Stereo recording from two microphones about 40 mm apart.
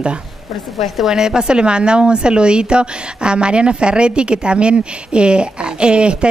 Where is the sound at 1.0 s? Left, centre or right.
Centre.